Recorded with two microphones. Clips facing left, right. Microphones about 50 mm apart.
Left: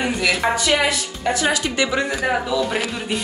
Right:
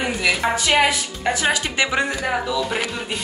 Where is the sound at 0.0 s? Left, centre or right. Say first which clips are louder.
Left 1 dB; centre.